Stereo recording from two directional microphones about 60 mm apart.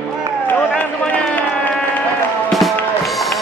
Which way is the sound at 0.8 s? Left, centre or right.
Left.